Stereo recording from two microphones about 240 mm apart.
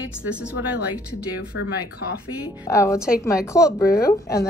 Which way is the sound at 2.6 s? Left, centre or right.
Centre.